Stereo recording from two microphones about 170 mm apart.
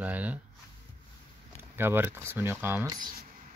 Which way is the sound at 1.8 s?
15° right (ahead or behind).